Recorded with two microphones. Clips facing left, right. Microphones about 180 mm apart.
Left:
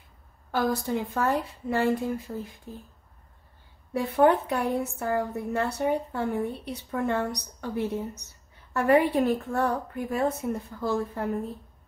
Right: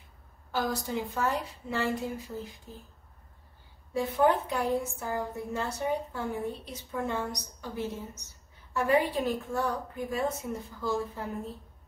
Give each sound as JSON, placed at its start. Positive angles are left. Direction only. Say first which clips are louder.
{"t": 0.5, "sound": "a woman's voice", "louder": "left 5 dB", "side_deg": 55}
{"t": 3.9, "sound": "a woman's voice", "louder": "left 4 dB", "side_deg": 65}